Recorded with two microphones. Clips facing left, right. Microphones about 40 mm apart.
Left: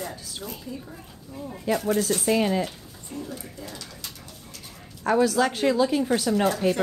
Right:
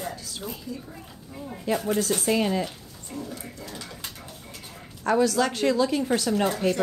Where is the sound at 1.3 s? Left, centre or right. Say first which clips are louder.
Left 1 dB; centre.